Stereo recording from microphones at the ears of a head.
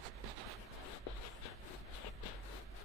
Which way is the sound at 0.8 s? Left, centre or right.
Left.